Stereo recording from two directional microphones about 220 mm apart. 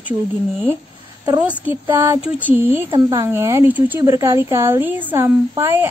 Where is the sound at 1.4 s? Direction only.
10° right (ahead or behind).